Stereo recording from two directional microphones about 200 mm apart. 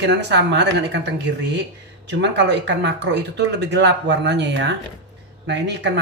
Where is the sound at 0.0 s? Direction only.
60° right (ahead or behind).